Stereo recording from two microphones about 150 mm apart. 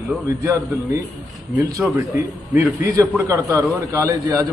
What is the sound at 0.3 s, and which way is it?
Speech, 20° right (ahead or behind).